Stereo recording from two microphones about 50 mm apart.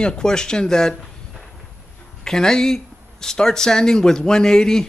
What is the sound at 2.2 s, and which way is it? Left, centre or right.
Speech, centre.